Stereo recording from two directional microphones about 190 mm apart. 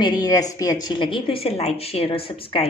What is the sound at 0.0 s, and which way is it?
A woman's voice, 20° left (ahead or behind).